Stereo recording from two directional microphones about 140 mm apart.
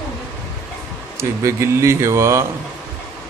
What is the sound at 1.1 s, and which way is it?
A man's voice, 20° right (ahead or behind).